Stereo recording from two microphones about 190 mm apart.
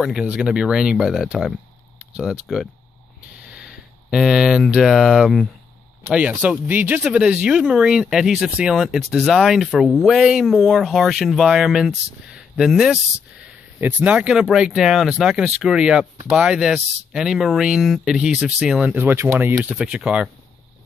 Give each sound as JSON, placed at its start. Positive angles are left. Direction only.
{"t": 0.0, "sound": "speech", "side_deg": -5}